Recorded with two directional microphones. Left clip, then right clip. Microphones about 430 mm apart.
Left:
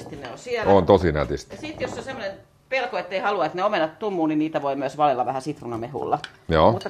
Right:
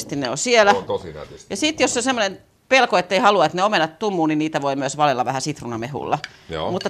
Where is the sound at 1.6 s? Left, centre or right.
Right.